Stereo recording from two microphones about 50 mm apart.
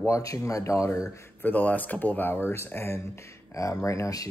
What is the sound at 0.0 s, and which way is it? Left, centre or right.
Speech, left.